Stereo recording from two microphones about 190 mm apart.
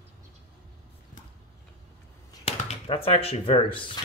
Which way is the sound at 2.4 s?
30° left (ahead or behind).